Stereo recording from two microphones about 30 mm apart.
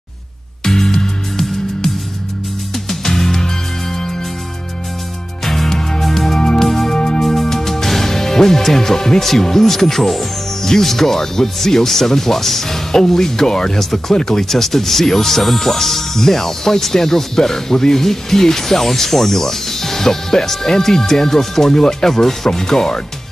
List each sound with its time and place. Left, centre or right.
0.7 s music: centre
2.9 s music: centre
5.4 s music: centre
6.9 s music: left
7.2 s music: centre
9.2 s speech: centre
14.6 s speech: centre